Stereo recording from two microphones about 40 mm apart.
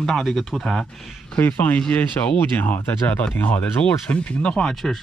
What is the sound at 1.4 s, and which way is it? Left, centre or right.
A man's voice, left.